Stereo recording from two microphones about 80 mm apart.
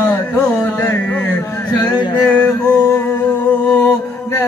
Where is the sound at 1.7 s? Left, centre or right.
Left.